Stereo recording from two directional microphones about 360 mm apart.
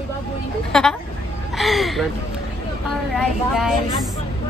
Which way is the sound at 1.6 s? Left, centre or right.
Centre.